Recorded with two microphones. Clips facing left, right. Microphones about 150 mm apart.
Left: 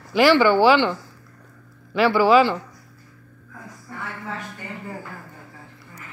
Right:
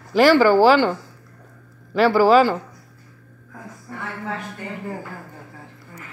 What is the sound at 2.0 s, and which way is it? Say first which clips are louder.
Speech: right 2 dB; 35° right (ahead or behind).